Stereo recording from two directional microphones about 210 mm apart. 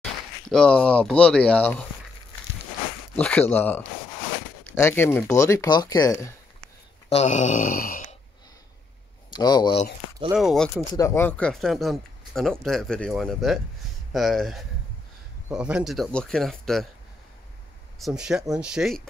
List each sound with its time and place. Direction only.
0.0 s speech: 5° left (ahead or behind)
3.2 s speech: 5° left (ahead or behind)
4.8 s speech: 10° left (ahead or behind)
7.1 s speech: 30° left (ahead or behind)
9.3 s speech: 20° left (ahead or behind)
10.3 s speech: centre (ahead or behind)
11.0 s speech: 10° left (ahead or behind)
17.9 s speech: centre (ahead or behind)